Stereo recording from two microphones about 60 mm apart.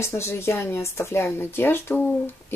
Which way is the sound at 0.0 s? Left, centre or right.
Left.